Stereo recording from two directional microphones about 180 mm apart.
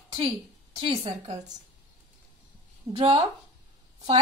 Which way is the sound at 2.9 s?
25° right (ahead or behind).